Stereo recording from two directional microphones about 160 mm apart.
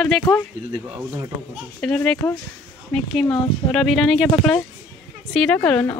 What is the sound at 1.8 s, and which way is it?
A woman's voice, 5° left (ahead or behind).